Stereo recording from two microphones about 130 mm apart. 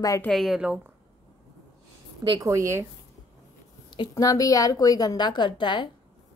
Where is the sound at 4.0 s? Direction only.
25° left (ahead or behind).